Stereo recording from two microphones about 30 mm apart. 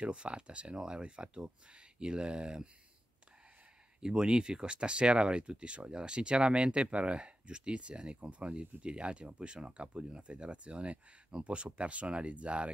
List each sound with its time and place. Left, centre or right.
0.1 s speech: right
4.0 s speech: right
8.2 s speech: right